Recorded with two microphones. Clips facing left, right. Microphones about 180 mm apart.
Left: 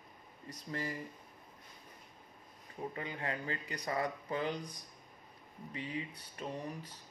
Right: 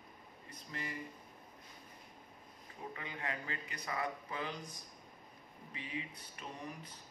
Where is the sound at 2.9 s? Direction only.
35° left (ahead or behind).